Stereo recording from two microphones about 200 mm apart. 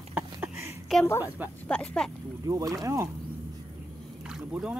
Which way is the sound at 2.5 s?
15° right (ahead or behind).